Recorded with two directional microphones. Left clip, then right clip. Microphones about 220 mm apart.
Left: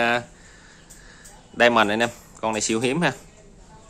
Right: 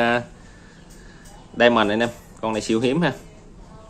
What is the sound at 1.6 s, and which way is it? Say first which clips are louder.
Speech: right 1 dB; 15° left (ahead or behind).